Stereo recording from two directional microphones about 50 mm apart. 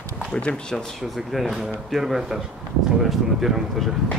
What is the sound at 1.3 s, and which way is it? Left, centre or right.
Speech, centre.